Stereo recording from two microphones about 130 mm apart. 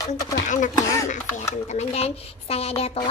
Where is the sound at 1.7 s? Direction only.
50° left (ahead or behind).